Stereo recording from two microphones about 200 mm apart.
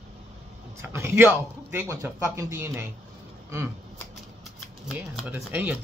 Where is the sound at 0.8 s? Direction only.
15° right (ahead or behind).